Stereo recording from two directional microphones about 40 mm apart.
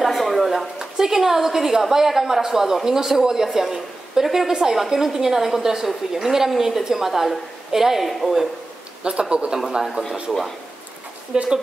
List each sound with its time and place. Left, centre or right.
0.0 s a sound: centre
0.7 s a woman's voice: centre
9.0 s speech: right
11.3 s speech: right